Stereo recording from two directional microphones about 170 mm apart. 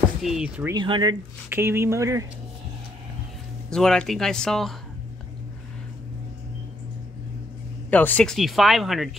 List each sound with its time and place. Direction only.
0.2 s speech: 5° right (ahead or behind)
0.7 s speech: 25° right (ahead or behind)
1.5 s speech: 15° right (ahead or behind)
3.7 s speech: 5° left (ahead or behind)
7.9 s speech: 10° left (ahead or behind)